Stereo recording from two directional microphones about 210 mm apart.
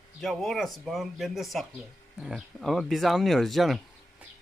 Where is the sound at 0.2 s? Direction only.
Centre (ahead or behind).